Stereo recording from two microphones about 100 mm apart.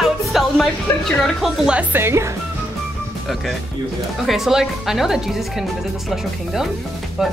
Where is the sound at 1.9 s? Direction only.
25° right (ahead or behind).